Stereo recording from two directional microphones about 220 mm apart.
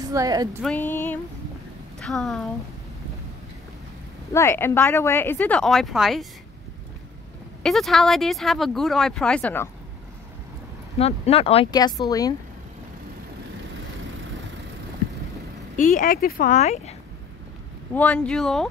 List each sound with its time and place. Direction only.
0.0 s speech: 15° right (ahead or behind)
0.6 s a woman's voice: 5° left (ahead or behind)
4.3 s a woman's voice: 10° left (ahead or behind)
7.6 s speech: centre (ahead or behind)
11.0 s a woman's voice: 30° left (ahead or behind)
15.7 s speech: 35° left (ahead or behind)
17.9 s speech: 5° left (ahead or behind)